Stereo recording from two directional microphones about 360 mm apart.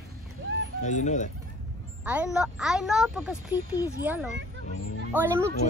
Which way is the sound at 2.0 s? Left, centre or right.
Centre.